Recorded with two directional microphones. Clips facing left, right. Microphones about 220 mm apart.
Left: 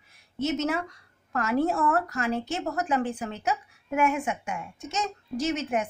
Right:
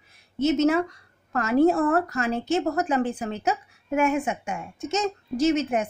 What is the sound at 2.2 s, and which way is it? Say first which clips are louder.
Speech: right 4 dB; 25° right (ahead or behind).